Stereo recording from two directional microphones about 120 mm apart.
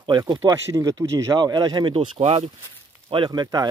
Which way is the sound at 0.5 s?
30° right (ahead or behind).